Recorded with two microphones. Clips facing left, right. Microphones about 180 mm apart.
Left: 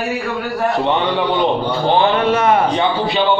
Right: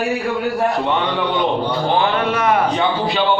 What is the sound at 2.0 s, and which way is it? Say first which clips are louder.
Speech: left 3 dB; 25° left (ahead or behind).